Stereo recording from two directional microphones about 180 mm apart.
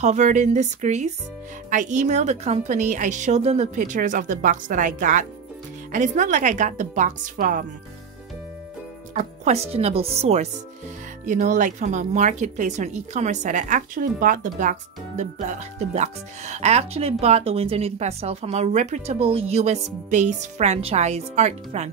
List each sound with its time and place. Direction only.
0.0 s a woman's voice: 40° right (ahead or behind)
9.1 s a woman's voice: 40° right (ahead or behind)